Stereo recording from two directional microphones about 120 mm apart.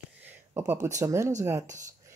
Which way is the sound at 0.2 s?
15° right (ahead or behind).